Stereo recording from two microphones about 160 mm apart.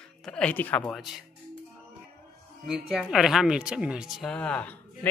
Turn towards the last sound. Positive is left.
turn(degrees=10)  # may be behind; listen again after turning